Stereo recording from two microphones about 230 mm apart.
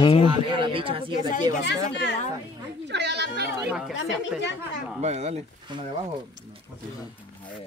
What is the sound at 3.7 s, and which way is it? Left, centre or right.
Speech, centre.